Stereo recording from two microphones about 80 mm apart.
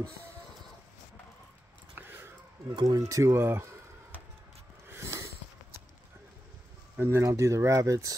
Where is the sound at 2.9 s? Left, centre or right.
Right.